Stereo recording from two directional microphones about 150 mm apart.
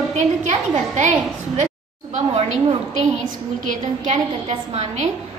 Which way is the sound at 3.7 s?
45° right (ahead or behind).